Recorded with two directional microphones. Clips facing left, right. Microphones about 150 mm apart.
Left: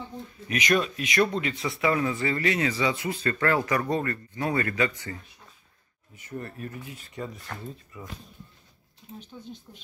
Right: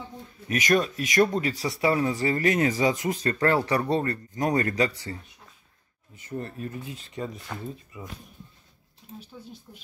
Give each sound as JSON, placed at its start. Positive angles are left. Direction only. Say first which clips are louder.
{"t": 0.5, "sound": "speech", "louder": "right 2 dB", "side_deg": -45}
{"t": 7.4, "sound": "speech", "louder": "right 3 dB", "side_deg": -10}
{"t": 9.2, "sound": "speech", "louder": "left 3 dB", "side_deg": -10}